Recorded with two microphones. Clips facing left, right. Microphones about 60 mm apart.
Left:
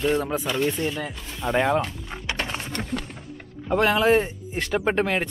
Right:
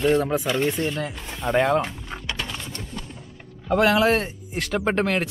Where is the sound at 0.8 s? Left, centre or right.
Centre.